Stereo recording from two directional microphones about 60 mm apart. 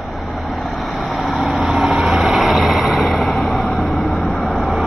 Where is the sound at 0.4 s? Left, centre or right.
Centre.